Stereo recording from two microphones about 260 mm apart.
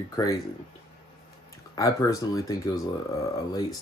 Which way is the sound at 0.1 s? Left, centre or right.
Centre.